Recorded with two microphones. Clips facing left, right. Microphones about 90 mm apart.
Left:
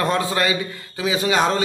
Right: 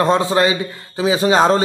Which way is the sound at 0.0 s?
25° right (ahead or behind).